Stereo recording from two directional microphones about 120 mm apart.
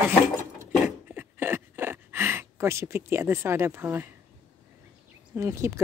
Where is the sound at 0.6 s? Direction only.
20° right (ahead or behind).